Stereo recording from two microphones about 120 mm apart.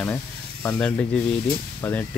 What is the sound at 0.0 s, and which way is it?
Speech, 15° left (ahead or behind).